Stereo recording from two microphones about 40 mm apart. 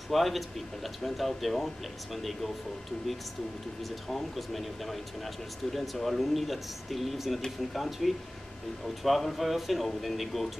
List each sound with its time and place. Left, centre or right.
0.1 s speech: centre
4.1 s speech: centre